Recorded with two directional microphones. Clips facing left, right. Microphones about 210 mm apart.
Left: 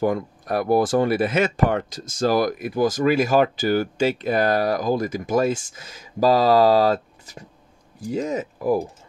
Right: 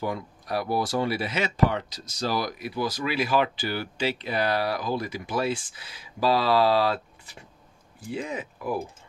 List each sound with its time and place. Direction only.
0.0 s speech: 50° left (ahead or behind)